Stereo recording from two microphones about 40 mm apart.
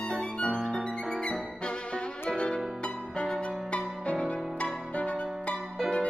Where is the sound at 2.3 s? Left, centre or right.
Left.